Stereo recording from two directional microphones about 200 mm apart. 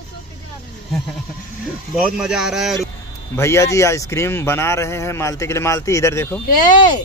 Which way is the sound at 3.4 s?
15° left (ahead or behind).